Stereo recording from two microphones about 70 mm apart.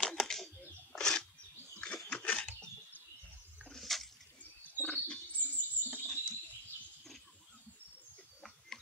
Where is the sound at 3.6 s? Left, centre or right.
Centre.